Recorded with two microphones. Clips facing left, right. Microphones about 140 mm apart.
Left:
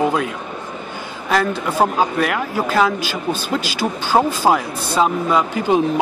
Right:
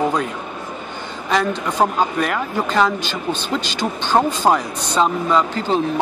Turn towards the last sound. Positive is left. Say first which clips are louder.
# left 1 dB
turn(degrees=10)  # may be behind; listen again after turning